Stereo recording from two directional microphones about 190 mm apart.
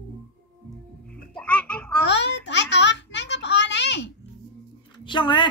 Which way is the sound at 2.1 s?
70° left (ahead or behind).